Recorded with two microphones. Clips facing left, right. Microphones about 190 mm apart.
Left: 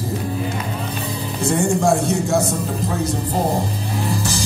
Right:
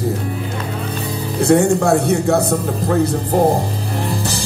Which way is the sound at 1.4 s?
60° right (ahead or behind).